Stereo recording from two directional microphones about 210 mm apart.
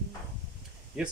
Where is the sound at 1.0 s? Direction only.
5° right (ahead or behind).